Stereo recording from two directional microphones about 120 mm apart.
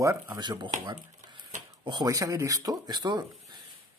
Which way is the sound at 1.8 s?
40° right (ahead or behind).